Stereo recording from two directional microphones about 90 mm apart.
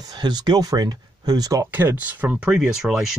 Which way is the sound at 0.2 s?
55° right (ahead or behind).